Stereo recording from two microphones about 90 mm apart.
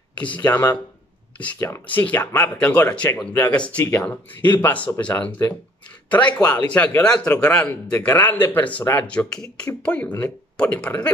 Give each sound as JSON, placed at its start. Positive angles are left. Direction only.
{"t": 0.4, "sound": "speech", "side_deg": 20}